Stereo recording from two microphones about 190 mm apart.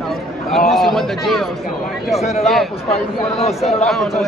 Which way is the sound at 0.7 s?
Centre (ahead or behind).